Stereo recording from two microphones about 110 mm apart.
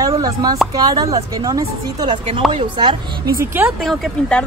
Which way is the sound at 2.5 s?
50° right (ahead or behind).